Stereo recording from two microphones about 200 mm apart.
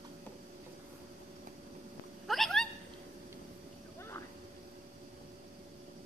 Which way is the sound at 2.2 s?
Centre (ahead or behind).